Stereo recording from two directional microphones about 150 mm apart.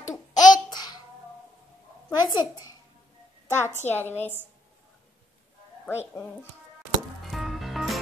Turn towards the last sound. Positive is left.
turn(degrees=0)  # may be behind; listen again after turning